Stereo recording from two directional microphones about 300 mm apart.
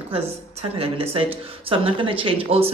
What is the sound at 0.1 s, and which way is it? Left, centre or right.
Speech, centre.